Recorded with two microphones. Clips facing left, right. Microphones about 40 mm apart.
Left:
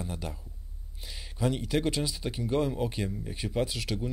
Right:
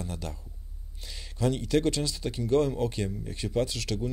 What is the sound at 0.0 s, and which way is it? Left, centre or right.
Speech, centre.